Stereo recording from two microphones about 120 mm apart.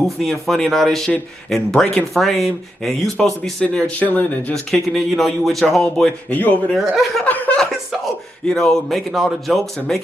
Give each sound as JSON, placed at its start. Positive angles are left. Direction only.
{"t": 0.2, "sound": "speech", "side_deg": 0}
{"t": 4.6, "sound": "speech", "side_deg": 0}
{"t": 6.7, "sound": "speech", "side_deg": 0}
{"t": 7.2, "sound": "speech", "side_deg": 15}